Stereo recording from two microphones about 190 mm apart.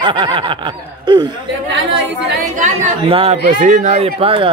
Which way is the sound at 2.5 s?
40° right (ahead or behind).